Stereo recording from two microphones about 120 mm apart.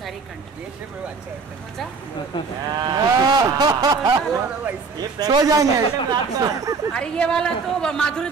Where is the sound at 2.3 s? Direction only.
40° left (ahead or behind).